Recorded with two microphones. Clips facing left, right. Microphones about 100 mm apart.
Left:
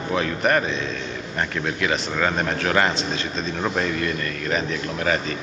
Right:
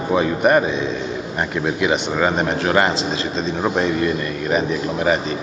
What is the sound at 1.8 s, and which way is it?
Speech, 10° right (ahead or behind).